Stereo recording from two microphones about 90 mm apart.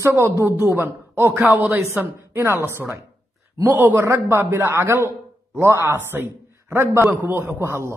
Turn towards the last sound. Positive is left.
turn(degrees=-25)  # may be behind; listen again after turning